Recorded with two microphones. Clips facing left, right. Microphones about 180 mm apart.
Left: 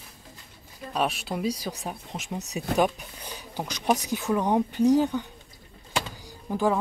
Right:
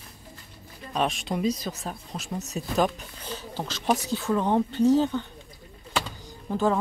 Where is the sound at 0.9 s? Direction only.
5° left (ahead or behind).